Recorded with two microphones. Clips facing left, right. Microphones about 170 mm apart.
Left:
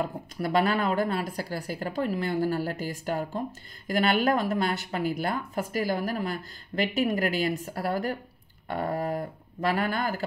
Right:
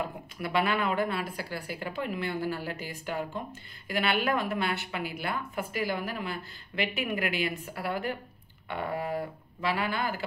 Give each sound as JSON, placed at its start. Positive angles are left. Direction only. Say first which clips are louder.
{"t": 0.4, "sound": "a woman's voice", "louder": "left 3 dB", "side_deg": 40}